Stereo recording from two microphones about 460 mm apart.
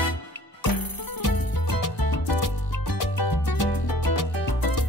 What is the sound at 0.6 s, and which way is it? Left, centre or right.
Music, left.